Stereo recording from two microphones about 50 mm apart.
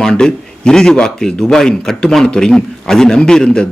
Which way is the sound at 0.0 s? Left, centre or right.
Centre.